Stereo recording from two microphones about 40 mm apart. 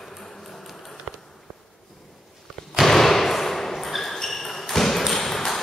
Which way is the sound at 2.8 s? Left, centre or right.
Centre.